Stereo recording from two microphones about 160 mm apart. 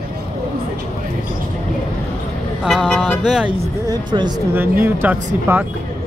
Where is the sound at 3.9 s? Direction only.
25° right (ahead or behind).